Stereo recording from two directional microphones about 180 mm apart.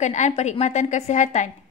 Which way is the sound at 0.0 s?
40° left (ahead or behind).